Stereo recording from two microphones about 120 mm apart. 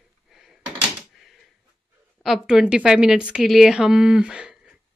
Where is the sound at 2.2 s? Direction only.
5° right (ahead or behind).